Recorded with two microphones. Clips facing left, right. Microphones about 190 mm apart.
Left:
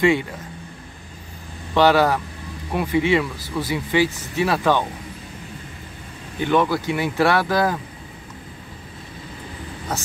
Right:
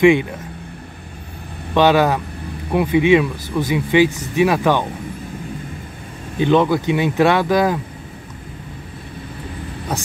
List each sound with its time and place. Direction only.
0.0 s speech: 15° right (ahead or behind)
1.7 s speech: 20° right (ahead or behind)
6.4 s speech: 20° right (ahead or behind)